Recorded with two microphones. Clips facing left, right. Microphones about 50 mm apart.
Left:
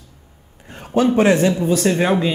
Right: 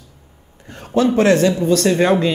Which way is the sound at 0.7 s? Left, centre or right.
Centre.